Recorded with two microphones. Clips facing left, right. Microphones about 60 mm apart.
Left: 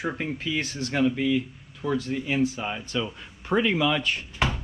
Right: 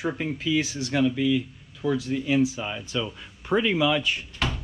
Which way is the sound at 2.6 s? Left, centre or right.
Left.